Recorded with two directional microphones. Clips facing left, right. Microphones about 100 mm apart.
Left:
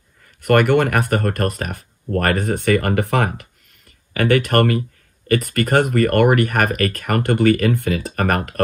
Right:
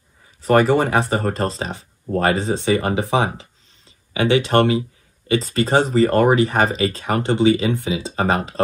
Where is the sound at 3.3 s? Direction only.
65° left (ahead or behind).